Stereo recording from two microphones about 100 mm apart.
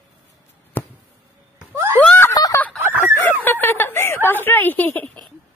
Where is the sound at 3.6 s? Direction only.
20° left (ahead or behind).